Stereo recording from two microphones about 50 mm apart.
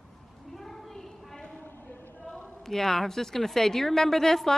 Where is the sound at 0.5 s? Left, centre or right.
Centre.